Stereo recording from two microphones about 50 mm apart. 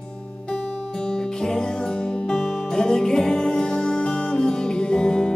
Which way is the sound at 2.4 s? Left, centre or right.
Centre.